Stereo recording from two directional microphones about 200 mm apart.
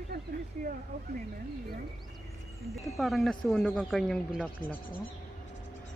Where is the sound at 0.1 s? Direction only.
55° right (ahead or behind).